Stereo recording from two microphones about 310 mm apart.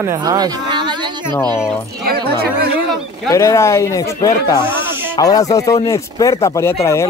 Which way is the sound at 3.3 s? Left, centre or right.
Centre.